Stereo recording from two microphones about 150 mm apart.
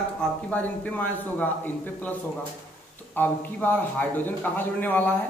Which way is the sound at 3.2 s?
10° left (ahead or behind).